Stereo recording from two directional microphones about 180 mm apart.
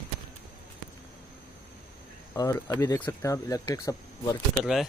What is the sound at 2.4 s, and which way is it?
Speech, 20° left (ahead or behind).